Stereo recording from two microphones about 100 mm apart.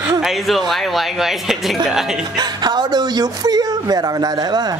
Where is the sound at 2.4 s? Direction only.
45° right (ahead or behind).